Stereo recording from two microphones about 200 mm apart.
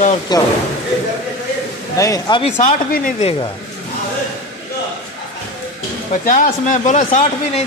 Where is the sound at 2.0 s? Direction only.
20° left (ahead or behind).